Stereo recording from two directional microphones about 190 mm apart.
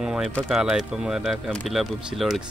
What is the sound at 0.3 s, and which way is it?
Speech, centre (ahead or behind).